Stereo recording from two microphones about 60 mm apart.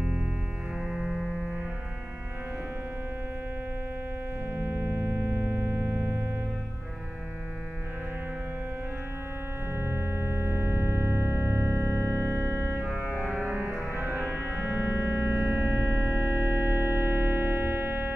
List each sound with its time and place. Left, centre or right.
0.0 s music: centre
0.7 s music: centre
1.1 s music: left
4.5 s music: right
9.7 s music: right
13.4 s music: right